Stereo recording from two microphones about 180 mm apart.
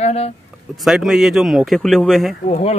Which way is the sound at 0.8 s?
Centre (ahead or behind).